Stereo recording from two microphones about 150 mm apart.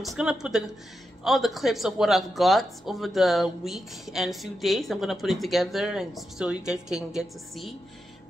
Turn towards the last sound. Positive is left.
turn(degrees=-5)  # may be behind; listen again after turning